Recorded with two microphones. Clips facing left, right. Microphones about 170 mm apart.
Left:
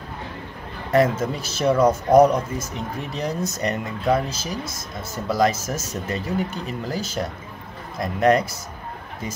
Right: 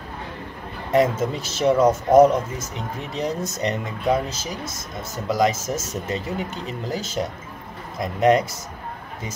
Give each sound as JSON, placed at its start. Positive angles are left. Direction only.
{"t": 0.9, "sound": "speech", "side_deg": -25}